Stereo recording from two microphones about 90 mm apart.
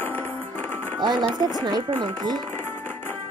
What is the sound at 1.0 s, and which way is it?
Speech, 55° right (ahead or behind).